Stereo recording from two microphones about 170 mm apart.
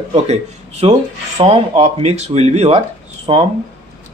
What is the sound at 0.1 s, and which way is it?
Speech, 40° right (ahead or behind).